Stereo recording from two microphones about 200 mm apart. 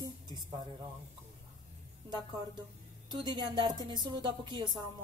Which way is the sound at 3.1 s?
20° right (ahead or behind).